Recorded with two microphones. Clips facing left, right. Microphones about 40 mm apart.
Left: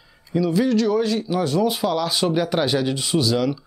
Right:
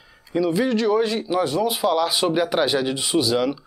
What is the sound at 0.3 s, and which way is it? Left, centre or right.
Speech, centre.